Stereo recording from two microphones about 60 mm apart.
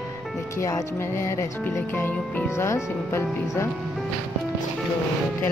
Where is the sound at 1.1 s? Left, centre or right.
Left.